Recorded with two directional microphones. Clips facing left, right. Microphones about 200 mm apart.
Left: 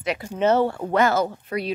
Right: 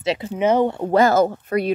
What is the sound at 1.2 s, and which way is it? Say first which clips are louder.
Speech: right 6 dB; 50° right (ahead or behind).